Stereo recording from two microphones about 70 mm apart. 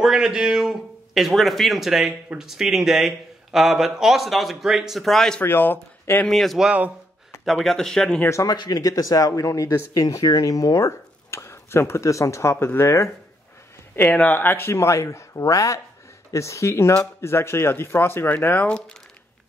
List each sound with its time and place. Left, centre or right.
0.0 s a man's voice: centre
5.4 s speech: left
6.2 s a man's voice: centre
7.6 s speech: centre
8.3 s speech: left
8.5 s speech: left
14.0 s speech: left